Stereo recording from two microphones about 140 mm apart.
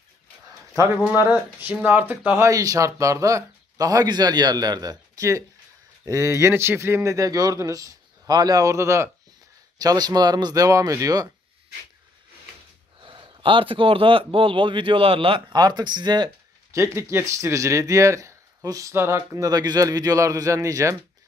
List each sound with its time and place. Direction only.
1.0 s speech: 15° right (ahead or behind)
13.0 s speech: 35° right (ahead or behind)
16.7 s speech: 20° right (ahead or behind)